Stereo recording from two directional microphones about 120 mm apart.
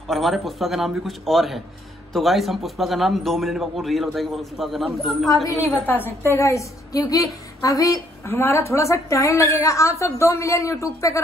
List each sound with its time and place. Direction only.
0.1 s a man's voice: centre (ahead or behind)
5.3 s a woman's voice: 30° left (ahead or behind)
5.7 s a woman's voice: 15° left (ahead or behind)